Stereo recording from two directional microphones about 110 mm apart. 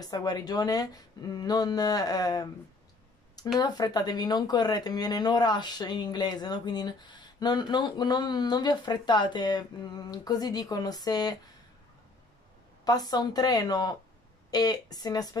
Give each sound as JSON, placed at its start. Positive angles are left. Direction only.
{"t": 0.0, "sound": "speech", "side_deg": 35}
{"t": 3.5, "sound": "speech", "side_deg": 40}
{"t": 12.8, "sound": "speech", "side_deg": 40}